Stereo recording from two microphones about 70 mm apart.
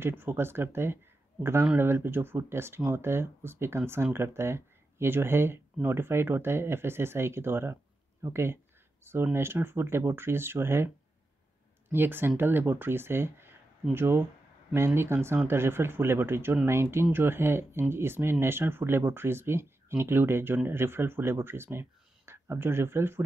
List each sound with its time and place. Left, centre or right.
0.0 s speech: right
11.9 s speech: right